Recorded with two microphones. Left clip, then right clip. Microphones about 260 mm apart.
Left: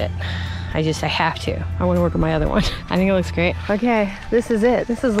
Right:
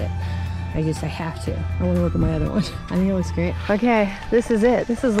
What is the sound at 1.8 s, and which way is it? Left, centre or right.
Speech, centre.